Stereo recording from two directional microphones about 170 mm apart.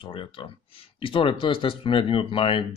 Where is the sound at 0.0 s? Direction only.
30° left (ahead or behind).